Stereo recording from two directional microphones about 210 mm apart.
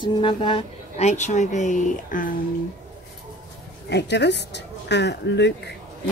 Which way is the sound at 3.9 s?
55° left (ahead or behind).